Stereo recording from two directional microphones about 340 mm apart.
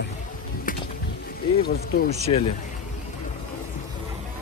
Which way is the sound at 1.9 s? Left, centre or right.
Left.